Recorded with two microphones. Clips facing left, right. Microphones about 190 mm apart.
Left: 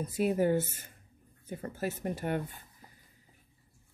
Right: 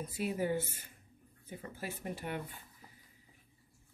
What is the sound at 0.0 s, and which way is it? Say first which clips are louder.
Speech: left 7 dB; 50° left (ahead or behind).